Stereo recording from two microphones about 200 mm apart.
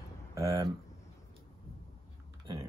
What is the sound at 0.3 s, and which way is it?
Speech, 15° right (ahead or behind).